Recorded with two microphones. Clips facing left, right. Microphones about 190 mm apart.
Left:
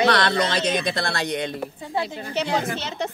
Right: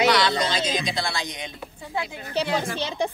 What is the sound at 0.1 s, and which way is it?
Speech, 60° left (ahead or behind).